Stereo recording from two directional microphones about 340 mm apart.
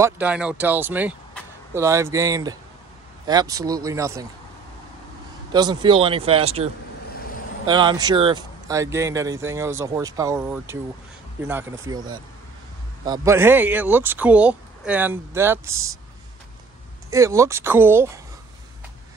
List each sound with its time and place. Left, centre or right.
0.0 s speech: centre
5.5 s speech: centre
17.1 s speech: centre